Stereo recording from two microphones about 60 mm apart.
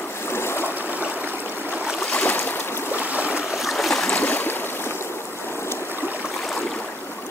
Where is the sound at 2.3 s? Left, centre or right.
Left.